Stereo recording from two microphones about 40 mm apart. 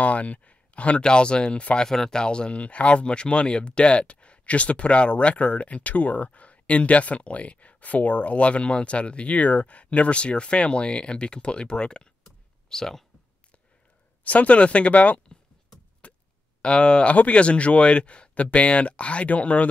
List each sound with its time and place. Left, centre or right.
0.0 s speech: left
1.8 s speech: centre
14.2 s speech: left
16.0 s a sound: left
16.6 s speech: left